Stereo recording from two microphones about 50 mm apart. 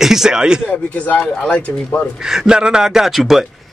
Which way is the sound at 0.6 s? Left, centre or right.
Left.